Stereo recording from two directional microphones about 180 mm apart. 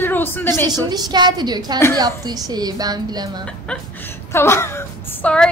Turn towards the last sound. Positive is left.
turn(degrees=5)  # may be behind; listen again after turning